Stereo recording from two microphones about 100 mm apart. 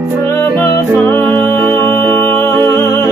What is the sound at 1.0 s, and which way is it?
Music, 20° left (ahead or behind).